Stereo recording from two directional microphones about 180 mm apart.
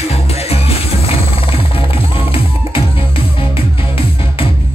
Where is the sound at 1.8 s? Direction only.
30° left (ahead or behind).